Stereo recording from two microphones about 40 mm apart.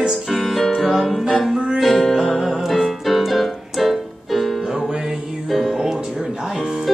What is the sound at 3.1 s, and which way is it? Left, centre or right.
Keyboard, centre.